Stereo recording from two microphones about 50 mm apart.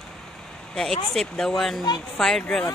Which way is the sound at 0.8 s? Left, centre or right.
Centre.